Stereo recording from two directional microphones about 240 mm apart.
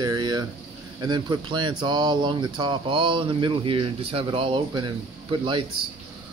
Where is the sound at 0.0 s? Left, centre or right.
Centre.